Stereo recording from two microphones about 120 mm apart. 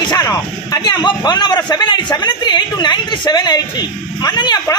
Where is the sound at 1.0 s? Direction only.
40° left (ahead or behind).